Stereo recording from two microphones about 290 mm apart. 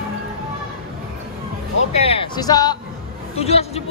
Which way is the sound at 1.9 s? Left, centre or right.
Centre.